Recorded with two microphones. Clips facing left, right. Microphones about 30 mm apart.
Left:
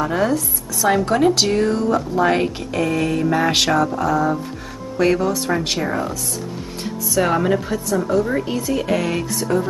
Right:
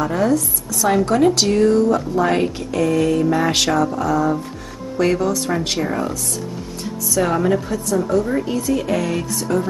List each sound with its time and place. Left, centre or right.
0.1 s speech: centre
0.7 s speech: centre
7.2 s speech: centre